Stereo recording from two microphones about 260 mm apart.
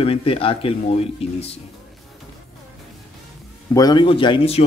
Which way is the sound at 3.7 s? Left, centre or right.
Centre.